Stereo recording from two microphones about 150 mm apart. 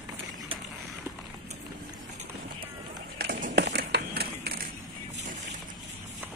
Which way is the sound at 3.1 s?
75° right (ahead or behind).